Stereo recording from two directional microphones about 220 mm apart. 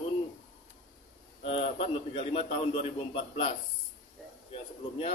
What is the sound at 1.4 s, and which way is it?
A man's voice, 25° left (ahead or behind).